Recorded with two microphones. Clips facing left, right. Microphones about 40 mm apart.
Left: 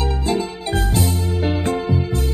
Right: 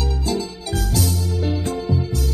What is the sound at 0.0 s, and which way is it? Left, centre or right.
Music, left.